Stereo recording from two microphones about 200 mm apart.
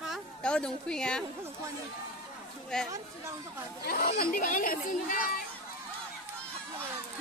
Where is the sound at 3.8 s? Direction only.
50° left (ahead or behind).